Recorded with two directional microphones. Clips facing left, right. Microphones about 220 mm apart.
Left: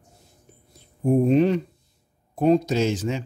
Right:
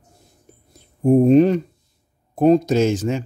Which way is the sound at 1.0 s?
45° right (ahead or behind).